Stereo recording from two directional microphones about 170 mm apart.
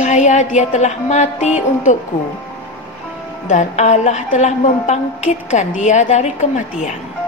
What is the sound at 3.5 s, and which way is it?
A woman's voice, 45° left (ahead or behind).